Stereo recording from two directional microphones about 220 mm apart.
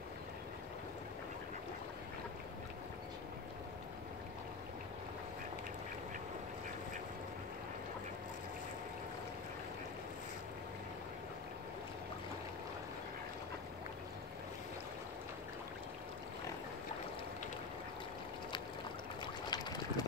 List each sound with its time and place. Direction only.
19.5 s boat: 20° left (ahead or behind)